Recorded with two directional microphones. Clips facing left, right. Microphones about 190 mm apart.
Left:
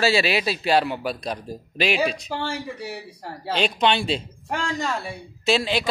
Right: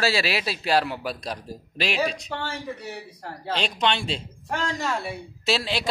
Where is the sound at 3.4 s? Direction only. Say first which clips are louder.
Left 4 dB; 5° left (ahead or behind).